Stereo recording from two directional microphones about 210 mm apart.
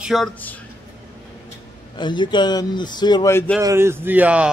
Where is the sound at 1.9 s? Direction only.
20° left (ahead or behind).